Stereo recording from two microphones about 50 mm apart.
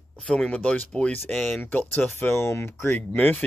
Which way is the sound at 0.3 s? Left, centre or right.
Left.